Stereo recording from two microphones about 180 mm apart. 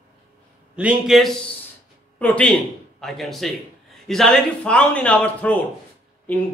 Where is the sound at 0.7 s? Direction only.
5° right (ahead or behind).